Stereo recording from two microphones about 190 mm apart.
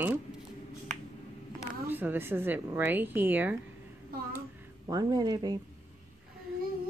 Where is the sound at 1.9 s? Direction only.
10° right (ahead or behind).